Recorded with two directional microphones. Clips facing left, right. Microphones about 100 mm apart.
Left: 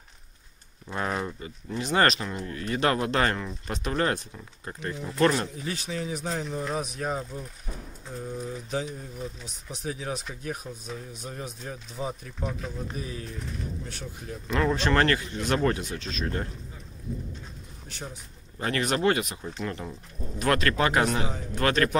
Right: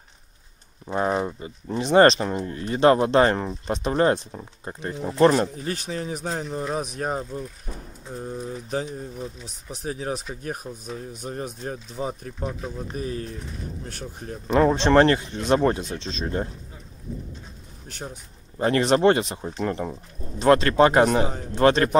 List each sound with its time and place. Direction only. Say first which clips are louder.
0.8 s speech: right 6 dB; 25° right (ahead or behind)
5.6 s speech: right 3 dB; 45° right (ahead or behind)
14.5 s speech: right 7 dB; 25° right (ahead or behind)
18.6 s speech: right 7 dB; 30° right (ahead or behind); by 20.0 s 45° right (ahead or behind)
20.3 s speech: right 8 dB; 25° right (ahead or behind)
21.0 s speech: right 7 dB; 40° right (ahead or behind)
21.5 s speech: right 6 dB; 25° right (ahead or behind)